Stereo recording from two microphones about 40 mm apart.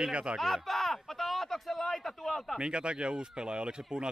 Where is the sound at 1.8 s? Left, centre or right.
Centre.